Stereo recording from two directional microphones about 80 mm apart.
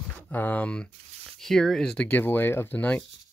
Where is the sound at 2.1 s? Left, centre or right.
Left.